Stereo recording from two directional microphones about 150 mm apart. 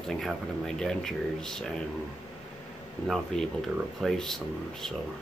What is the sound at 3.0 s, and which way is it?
Speech, centre (ahead or behind).